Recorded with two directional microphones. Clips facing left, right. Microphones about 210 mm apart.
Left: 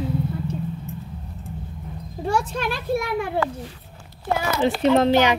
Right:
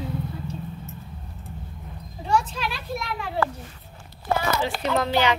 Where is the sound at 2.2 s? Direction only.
45° left (ahead or behind).